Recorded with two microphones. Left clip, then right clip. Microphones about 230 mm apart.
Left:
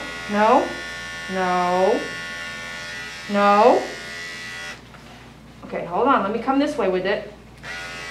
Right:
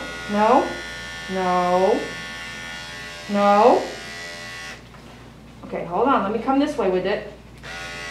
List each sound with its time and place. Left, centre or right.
0.0 s electric shaver: centre
5.7 s speech: centre
7.6 s a sound: centre